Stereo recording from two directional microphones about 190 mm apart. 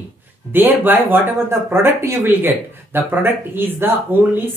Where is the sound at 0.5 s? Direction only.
10° right (ahead or behind).